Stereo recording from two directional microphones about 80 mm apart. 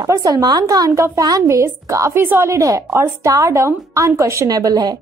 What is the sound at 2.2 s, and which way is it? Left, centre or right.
Speech, right.